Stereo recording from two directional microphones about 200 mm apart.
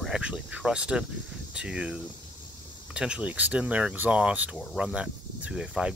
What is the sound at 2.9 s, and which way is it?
Speech, 5° right (ahead or behind).